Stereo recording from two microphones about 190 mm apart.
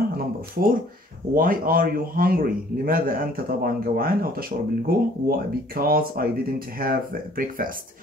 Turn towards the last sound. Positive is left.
turn(degrees=-50)  # may be behind; listen again after turning